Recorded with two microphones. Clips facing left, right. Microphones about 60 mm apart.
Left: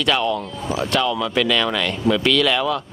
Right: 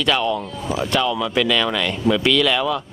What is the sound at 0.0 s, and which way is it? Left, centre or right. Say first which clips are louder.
Speech: even; centre.